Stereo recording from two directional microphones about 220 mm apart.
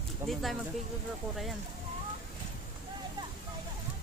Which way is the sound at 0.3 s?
Centre (ahead or behind).